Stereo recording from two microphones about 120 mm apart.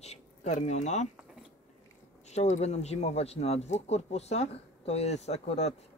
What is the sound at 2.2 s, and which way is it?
Speech, 75° left (ahead or behind).